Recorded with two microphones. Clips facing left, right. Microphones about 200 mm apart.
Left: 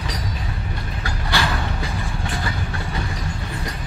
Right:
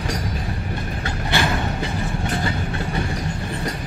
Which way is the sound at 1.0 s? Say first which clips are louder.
Right 1 dB; 20° right (ahead or behind).